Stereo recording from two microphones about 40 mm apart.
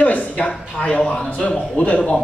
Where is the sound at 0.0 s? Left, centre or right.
Left.